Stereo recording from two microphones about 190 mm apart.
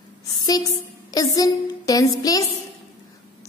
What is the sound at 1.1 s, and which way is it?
A woman's voice, 20° left (ahead or behind).